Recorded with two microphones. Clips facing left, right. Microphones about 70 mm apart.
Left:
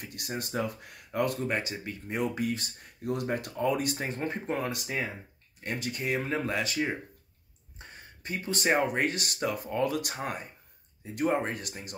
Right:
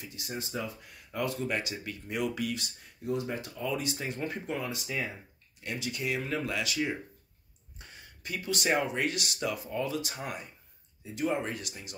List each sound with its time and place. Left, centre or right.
0.0 s speech: left
1.1 s speech: left
1.5 s speech: left
3.1 s speech: left
8.2 s speech: left